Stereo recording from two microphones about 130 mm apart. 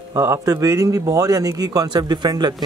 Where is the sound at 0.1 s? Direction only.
25° right (ahead or behind).